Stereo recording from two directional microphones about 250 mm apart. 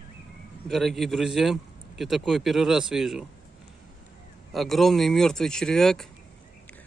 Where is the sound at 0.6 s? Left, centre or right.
Centre.